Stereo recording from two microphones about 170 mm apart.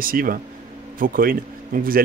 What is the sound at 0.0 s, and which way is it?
Speech, 55° right (ahead or behind).